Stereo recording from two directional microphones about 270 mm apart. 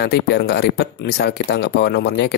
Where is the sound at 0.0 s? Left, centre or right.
Left.